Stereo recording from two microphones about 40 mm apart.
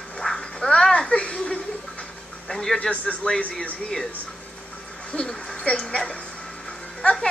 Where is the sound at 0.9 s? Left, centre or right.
Left.